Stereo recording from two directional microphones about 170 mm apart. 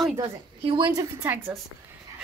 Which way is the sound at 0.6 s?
30° right (ahead or behind).